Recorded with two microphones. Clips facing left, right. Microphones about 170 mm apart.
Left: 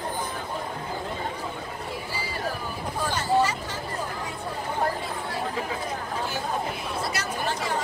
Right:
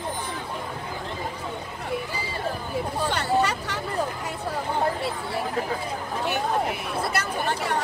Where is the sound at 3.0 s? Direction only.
65° right (ahead or behind).